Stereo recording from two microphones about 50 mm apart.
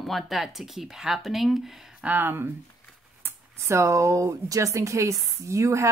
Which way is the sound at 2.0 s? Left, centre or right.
Right.